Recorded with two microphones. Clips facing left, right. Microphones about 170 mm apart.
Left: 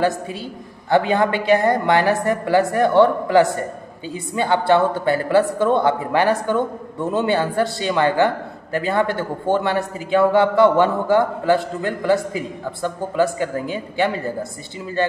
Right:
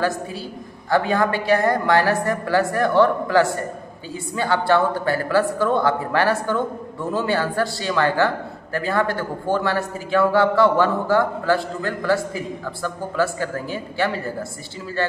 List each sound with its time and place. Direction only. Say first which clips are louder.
0.8 s a man's voice: left 2 dB; 20° left (ahead or behind)